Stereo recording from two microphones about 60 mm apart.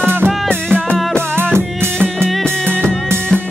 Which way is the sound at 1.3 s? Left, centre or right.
Right.